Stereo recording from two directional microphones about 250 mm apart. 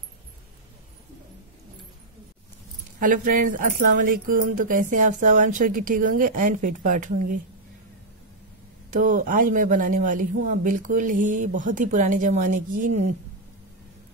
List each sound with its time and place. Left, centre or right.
3.0 s speech: right
8.9 s speech: right